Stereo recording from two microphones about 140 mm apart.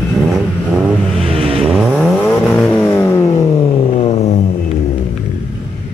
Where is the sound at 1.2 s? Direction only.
40° right (ahead or behind).